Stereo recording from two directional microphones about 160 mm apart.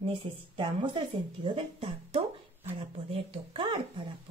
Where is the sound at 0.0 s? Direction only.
30° right (ahead or behind).